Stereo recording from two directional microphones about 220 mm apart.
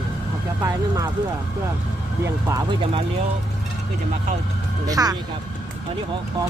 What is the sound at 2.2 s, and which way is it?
Speech, 15° right (ahead or behind).